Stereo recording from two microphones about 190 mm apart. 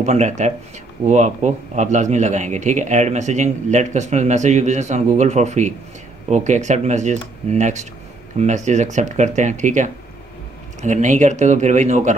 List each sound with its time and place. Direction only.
0.0 s speech: 35° right (ahead or behind)